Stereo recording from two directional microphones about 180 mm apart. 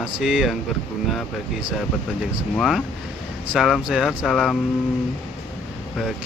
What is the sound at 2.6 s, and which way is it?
Speech, centre (ahead or behind).